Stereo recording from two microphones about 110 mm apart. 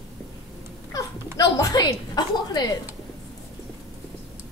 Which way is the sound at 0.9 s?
30° left (ahead or behind).